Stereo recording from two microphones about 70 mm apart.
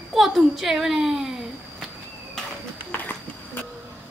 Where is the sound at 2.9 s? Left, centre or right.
Left.